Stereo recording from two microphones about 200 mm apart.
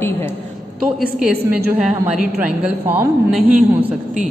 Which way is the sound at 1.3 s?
50° right (ahead or behind).